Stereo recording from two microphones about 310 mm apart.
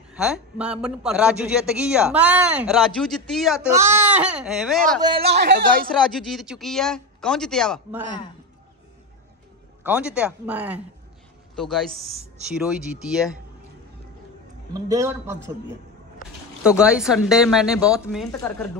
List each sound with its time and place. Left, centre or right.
0.1 s a man's voice: centre
5.0 s a man's voice: centre
5.3 s a woman's voice: right
5.9 s a man's voice: centre
9.8 s a man's voice: centre
14.7 s a man's voice: centre
16.6 s a man's voice: centre